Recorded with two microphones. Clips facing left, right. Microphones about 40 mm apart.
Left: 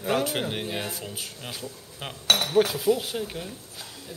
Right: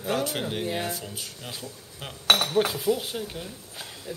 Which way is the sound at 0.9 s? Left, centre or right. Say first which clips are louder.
Even; centre.